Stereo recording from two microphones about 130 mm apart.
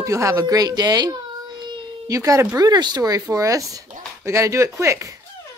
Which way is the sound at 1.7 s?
25° right (ahead or behind).